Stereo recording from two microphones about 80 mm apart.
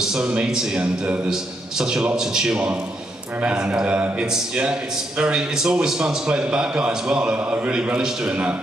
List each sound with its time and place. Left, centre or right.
0.0 s a man's voice: centre